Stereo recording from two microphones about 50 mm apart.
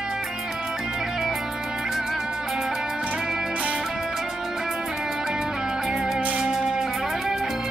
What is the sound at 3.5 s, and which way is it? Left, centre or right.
Music, right.